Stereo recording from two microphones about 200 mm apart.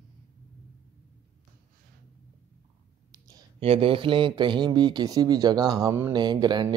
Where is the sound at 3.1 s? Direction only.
25° right (ahead or behind).